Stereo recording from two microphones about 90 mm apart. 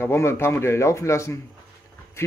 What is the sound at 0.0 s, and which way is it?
Speech, 30° left (ahead or behind).